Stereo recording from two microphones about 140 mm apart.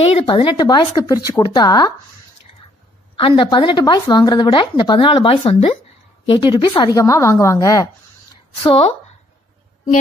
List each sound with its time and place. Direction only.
0.0 s speech: 45° left (ahead or behind)
3.2 s a woman's voice: 40° left (ahead or behind); by 7.9 s 25° left (ahead or behind)
8.6 s speech: 40° left (ahead or behind)